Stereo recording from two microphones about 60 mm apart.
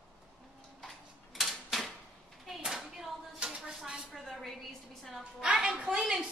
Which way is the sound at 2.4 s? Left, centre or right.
Centre.